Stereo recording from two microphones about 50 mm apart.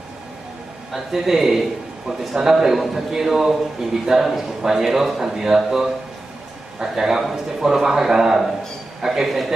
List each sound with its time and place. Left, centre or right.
0.9 s a man's voice: centre